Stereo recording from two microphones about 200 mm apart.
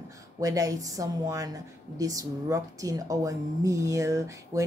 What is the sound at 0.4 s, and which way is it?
A woman's voice, 15° right (ahead or behind).